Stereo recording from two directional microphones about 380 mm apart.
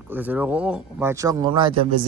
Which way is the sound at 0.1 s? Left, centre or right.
Centre.